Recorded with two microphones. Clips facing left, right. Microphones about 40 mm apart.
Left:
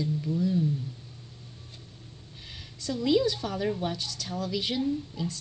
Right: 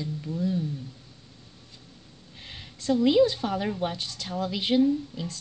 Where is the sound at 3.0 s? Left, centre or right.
Right.